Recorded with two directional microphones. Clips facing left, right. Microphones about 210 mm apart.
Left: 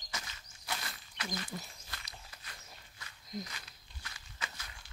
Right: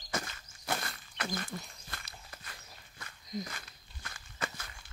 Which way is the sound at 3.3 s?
Centre (ahead or behind).